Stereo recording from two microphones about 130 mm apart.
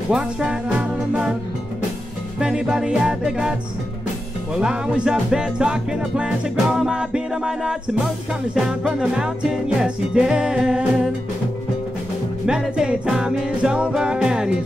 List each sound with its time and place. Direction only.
0.1 s music: 5° right (ahead or behind)
2.4 s music: 5° right (ahead or behind)
4.6 s music: 5° right (ahead or behind)
12.4 s music: 5° right (ahead or behind)